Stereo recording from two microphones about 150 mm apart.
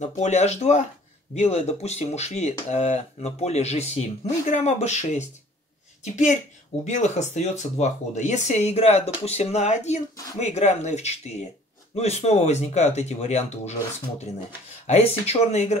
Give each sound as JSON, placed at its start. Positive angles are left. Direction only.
{"t": 0.0, "sound": "speech", "side_deg": 50}